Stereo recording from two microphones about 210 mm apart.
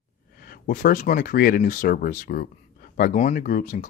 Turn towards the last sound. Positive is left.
turn(degrees=40)  # may be behind; listen again after turning